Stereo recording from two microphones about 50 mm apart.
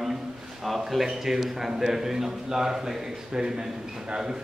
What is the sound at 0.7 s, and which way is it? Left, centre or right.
A man's voice, centre.